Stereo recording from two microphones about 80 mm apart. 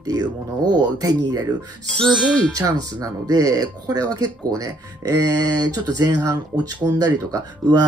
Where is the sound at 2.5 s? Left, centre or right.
Right.